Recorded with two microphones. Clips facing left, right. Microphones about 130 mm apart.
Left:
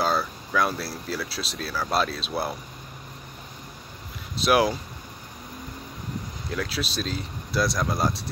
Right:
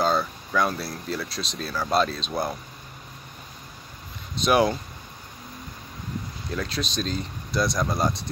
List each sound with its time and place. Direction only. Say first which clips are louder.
0.0 s a sound: right 2 dB; 5° left (ahead or behind)
0.5 s speech: even; centre (ahead or behind)
4.4 s speech: right 1 dB; 5° left (ahead or behind)
6.5 s speech: even; 5° left (ahead or behind)